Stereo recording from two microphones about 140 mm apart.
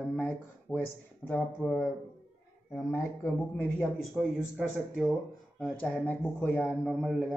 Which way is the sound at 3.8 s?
5° right (ahead or behind).